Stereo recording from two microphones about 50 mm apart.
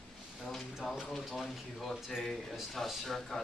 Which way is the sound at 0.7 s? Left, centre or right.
Centre.